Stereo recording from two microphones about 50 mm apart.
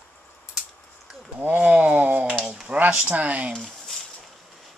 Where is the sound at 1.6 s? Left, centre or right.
Right.